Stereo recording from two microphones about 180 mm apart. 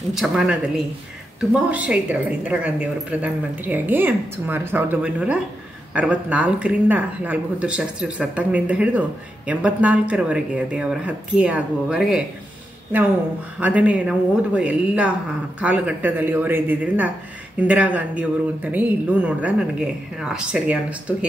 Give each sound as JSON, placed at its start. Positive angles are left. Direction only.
{"t": 0.1, "sound": "speech", "side_deg": -5}